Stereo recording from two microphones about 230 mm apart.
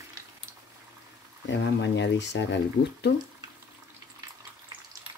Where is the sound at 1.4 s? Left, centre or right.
Left.